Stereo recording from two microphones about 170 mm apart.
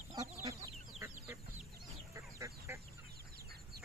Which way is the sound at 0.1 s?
20° right (ahead or behind).